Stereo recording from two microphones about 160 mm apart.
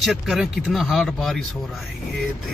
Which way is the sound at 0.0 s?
Centre (ahead or behind).